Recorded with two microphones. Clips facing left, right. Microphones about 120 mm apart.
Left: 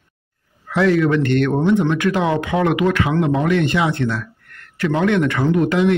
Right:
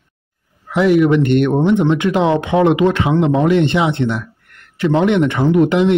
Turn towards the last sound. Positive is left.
turn(degrees=-20)  # may be behind; listen again after turning